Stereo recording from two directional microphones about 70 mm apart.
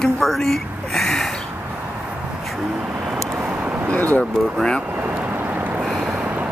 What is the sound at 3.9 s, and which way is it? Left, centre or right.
Speech, left.